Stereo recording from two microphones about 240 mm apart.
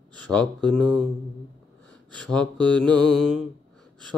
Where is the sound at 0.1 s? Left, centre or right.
Centre.